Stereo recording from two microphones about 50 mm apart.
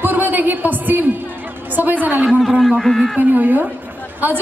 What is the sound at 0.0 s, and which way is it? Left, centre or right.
A woman's voice, right.